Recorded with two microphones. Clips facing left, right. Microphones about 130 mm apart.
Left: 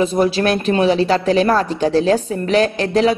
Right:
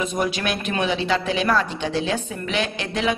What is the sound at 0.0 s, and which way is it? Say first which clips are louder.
A woman's voice: left 8 dB; 30° left (ahead or behind).